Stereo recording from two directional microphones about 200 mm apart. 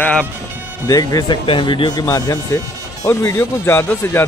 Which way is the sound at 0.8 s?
20° left (ahead or behind).